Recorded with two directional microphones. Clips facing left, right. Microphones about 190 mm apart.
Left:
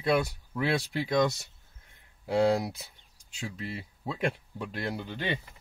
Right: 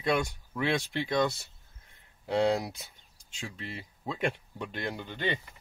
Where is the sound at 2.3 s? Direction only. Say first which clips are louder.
Left 2 dB; centre (ahead or behind).